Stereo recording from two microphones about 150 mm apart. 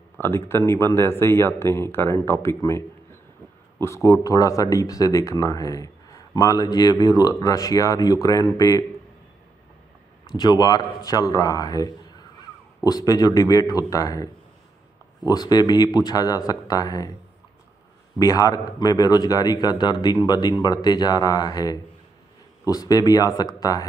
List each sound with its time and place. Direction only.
0.2 s speech: 15° left (ahead or behind)
3.8 s speech: 20° left (ahead or behind)
10.3 s speech: 25° left (ahead or behind)
18.2 s speech: 25° left (ahead or behind)